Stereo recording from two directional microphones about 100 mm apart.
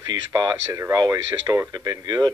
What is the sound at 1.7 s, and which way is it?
Speech, 40° right (ahead or behind).